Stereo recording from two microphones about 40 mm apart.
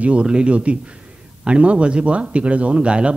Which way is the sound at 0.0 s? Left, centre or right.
Right.